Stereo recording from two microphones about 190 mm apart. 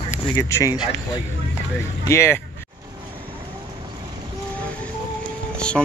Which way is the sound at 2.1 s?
15° left (ahead or behind).